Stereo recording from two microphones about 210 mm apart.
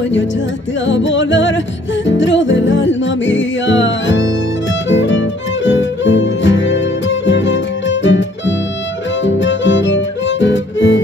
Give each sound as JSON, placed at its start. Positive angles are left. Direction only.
{"t": 0.8, "sound": "music", "side_deg": 60}